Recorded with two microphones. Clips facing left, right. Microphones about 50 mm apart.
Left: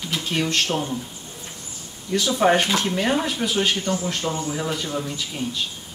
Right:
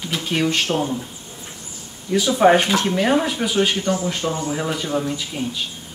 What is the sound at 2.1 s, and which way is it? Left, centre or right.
Speech, centre.